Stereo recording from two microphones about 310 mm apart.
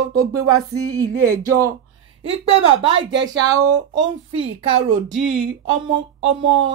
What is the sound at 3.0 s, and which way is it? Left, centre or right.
Speech, right.